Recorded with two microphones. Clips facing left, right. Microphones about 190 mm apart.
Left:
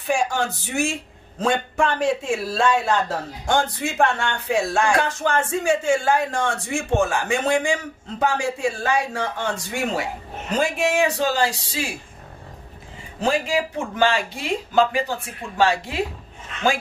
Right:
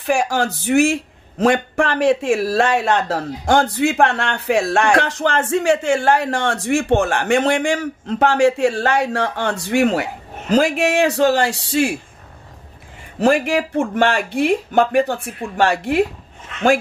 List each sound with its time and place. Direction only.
0.0 s speech: 75° right (ahead or behind)
13.2 s speech: 65° right (ahead or behind)